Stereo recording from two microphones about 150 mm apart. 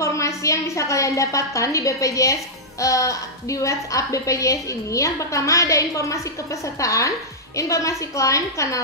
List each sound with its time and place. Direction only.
0.0 s a woman's voice: 20° left (ahead or behind)